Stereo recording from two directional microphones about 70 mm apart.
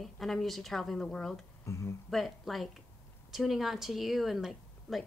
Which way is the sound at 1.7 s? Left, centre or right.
Left.